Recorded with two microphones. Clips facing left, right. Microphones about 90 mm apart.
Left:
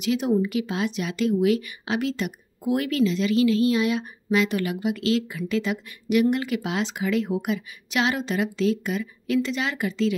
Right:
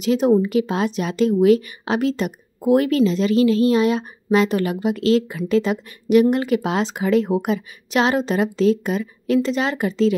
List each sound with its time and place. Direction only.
0.0 s speech: 40° right (ahead or behind)